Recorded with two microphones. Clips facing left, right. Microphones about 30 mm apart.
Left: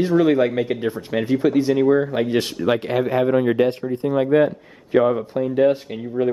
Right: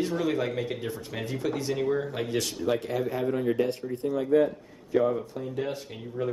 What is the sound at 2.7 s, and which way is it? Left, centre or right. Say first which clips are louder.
Speech: left 8 dB; left.